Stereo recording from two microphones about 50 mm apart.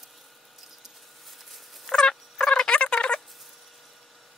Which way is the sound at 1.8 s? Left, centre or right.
Centre.